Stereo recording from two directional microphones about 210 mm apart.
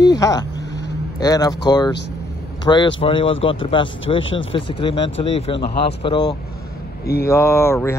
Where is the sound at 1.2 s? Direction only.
20° left (ahead or behind).